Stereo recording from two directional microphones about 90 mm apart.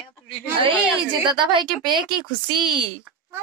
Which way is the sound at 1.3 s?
60° right (ahead or behind).